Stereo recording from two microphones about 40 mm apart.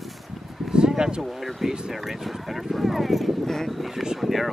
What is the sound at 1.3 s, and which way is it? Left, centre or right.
Speech, centre.